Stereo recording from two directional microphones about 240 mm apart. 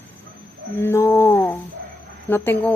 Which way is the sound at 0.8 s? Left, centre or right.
Centre.